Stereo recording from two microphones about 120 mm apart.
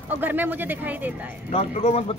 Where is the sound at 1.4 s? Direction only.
55° left (ahead or behind).